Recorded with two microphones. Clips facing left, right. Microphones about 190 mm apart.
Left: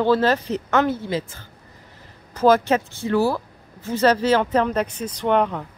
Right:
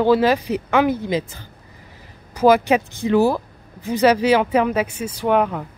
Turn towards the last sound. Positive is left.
turn(degrees=-5)  # may be behind; listen again after turning